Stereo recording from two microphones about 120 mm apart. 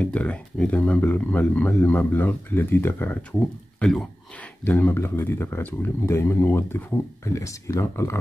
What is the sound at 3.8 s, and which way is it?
Speech, 5° left (ahead or behind).